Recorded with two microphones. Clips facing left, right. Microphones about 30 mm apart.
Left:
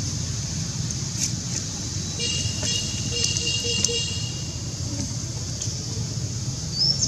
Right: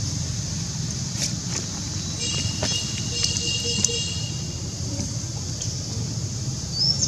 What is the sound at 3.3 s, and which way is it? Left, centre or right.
Patter, centre.